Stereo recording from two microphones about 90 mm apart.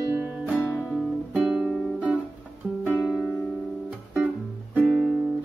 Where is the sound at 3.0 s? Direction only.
5° right (ahead or behind).